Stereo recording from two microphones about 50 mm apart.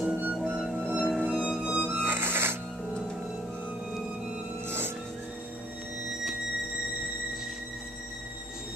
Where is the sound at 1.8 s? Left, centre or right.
Right.